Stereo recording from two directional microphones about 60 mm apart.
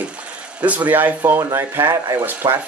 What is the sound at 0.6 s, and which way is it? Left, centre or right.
Speech, right.